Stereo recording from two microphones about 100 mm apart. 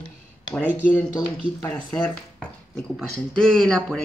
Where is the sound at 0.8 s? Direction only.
20° left (ahead or behind).